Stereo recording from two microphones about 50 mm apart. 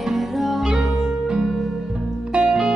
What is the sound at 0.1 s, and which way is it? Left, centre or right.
Music, centre.